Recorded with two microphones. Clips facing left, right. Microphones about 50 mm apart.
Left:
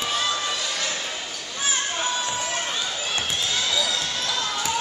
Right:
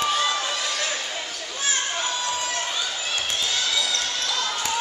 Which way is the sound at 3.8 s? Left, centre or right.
Centre.